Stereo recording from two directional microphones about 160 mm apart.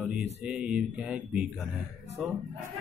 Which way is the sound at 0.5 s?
5° right (ahead or behind).